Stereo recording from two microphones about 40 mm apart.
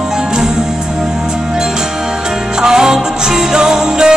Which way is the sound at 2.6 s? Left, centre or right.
Centre.